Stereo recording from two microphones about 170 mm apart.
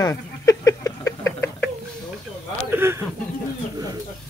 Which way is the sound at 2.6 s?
15° right (ahead or behind).